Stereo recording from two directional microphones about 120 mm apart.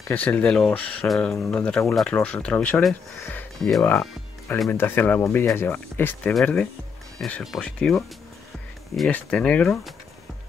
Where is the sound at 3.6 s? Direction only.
Centre (ahead or behind).